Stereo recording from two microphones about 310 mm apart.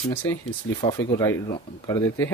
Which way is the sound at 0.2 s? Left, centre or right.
Centre.